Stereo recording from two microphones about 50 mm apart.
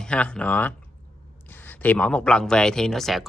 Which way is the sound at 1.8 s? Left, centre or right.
Left.